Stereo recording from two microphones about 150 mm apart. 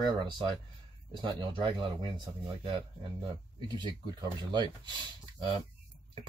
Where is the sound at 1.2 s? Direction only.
35° right (ahead or behind).